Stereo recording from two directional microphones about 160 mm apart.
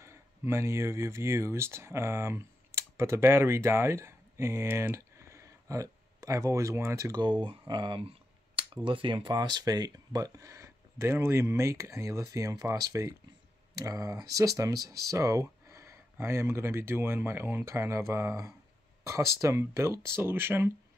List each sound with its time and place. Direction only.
0.0 s speech: 15° right (ahead or behind)